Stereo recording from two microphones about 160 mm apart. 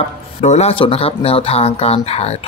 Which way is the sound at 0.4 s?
45° left (ahead or behind).